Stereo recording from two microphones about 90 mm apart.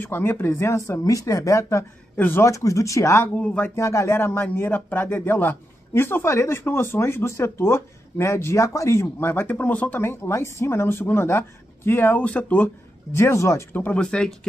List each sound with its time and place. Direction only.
0.0 s speech: 25° left (ahead or behind)
2.1 s a man's voice: 20° left (ahead or behind)
2.4 s speech: 35° left (ahead or behind)
3.3 s speech: 15° left (ahead or behind)
3.7 s speech: 35° left (ahead or behind)
13.7 s speech: 15° left (ahead or behind)